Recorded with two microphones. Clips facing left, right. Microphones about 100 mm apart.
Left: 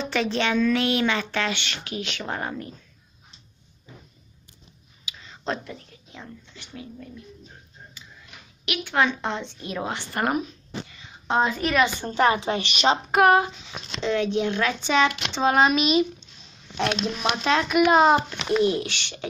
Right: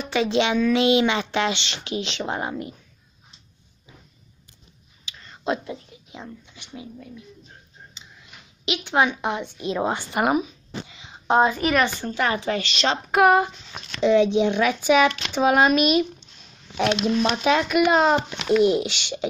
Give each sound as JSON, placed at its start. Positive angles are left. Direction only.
{"t": 0.0, "sound": "speech", "side_deg": -10}
{"t": 5.0, "sound": "a sound", "side_deg": 0}
{"t": 5.6, "sound": "speech", "side_deg": -20}
{"t": 8.0, "sound": "tick-tock", "side_deg": -20}
{"t": 8.6, "sound": "speech", "side_deg": -20}
{"t": 10.9, "sound": "a sound", "side_deg": -20}
{"t": 12.0, "sound": "speech", "side_deg": 25}
{"t": 13.1, "sound": "a child's voice", "side_deg": 0}
{"t": 14.0, "sound": "a child's voice", "side_deg": -15}
{"t": 18.7, "sound": "speech", "side_deg": -15}